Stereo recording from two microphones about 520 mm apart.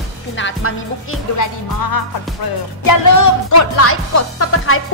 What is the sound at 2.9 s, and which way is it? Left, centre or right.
Speech, left.